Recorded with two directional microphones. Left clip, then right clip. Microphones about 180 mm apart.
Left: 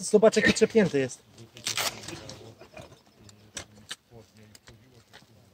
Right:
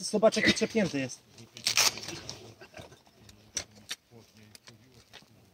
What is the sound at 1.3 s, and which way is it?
Tearing, 30° right (ahead or behind).